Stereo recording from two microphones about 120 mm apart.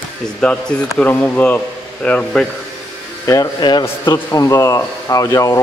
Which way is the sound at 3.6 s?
40° left (ahead or behind).